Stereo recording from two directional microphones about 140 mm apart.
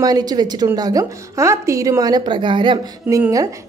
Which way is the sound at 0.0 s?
30° right (ahead or behind).